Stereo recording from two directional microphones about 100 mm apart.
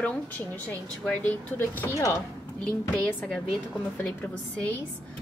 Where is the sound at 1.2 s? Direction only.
20° left (ahead or behind).